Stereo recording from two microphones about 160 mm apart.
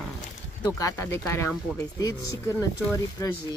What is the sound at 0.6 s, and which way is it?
Speech, 20° left (ahead or behind).